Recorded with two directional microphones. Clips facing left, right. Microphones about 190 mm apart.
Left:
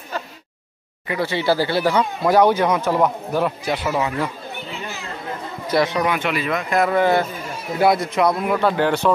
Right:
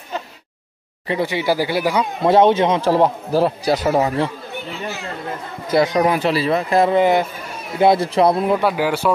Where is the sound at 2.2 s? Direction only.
25° right (ahead or behind).